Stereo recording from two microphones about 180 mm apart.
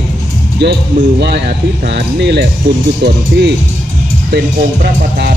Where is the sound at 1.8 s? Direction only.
70° right (ahead or behind).